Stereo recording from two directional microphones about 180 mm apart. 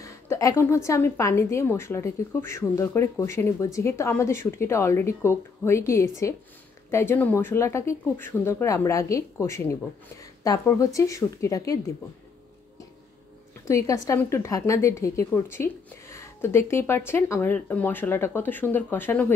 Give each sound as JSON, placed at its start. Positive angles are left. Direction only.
{"t": 0.0, "sound": "a woman's voice", "side_deg": 15}
{"t": 13.7, "sound": "a woman's voice", "side_deg": 15}